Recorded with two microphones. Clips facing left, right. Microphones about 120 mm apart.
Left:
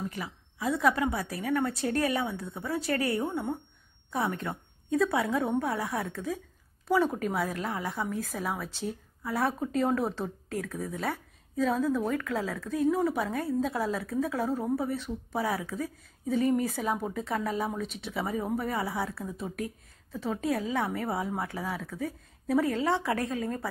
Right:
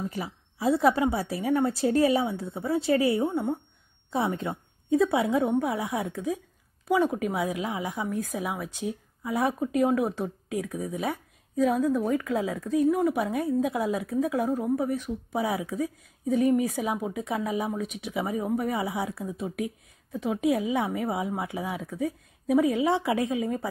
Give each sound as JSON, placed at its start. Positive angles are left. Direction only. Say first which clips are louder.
{"t": 0.1, "sound": "a woman's voice", "louder": "right 4 dB", "side_deg": -35}
{"t": 4.4, "sound": "a woman's voice", "louder": "right 3 dB", "side_deg": -25}